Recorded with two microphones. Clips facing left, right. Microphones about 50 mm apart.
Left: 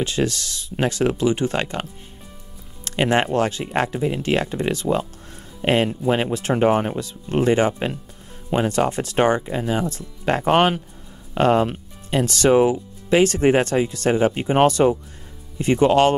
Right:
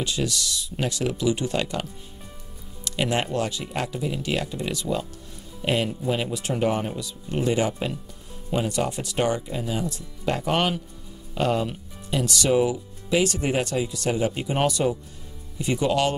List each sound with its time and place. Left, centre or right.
0.0 s speech: left
2.8 s music: left
3.3 s speech: left